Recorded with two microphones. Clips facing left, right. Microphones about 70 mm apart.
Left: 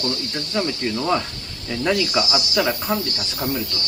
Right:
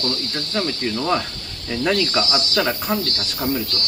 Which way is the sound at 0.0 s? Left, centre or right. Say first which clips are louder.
Even; centre.